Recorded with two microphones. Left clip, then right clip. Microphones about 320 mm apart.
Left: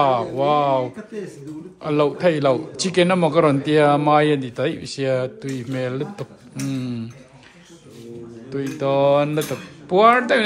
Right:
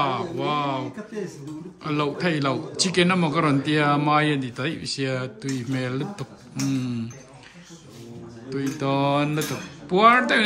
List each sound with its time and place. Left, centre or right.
0.0 s a man's voice: centre
8.5 s a man's voice: centre